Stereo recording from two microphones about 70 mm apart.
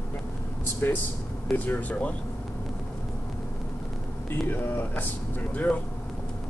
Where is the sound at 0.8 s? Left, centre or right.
Left.